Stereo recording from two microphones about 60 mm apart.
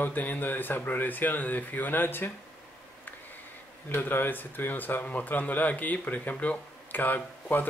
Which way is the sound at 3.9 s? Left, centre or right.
Left.